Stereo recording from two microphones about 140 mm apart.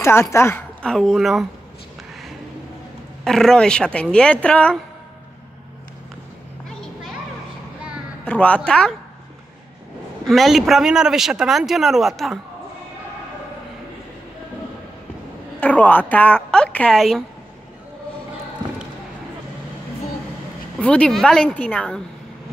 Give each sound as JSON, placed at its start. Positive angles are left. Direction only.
{"t": 0.0, "sound": "speech", "side_deg": 20}
{"t": 0.8, "sound": "a man's voice", "side_deg": 5}
{"t": 3.3, "sound": "speech", "side_deg": 5}
{"t": 8.3, "sound": "speech", "side_deg": 10}
{"t": 10.2, "sound": "a man's voice", "side_deg": 0}
{"t": 15.6, "sound": "a woman's voice", "side_deg": 10}
{"t": 20.8, "sound": "speech", "side_deg": 10}